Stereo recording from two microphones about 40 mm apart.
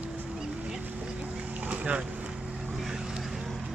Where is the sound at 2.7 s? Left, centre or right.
Centre.